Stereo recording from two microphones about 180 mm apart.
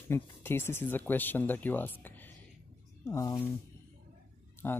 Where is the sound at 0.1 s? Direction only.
15° left (ahead or behind).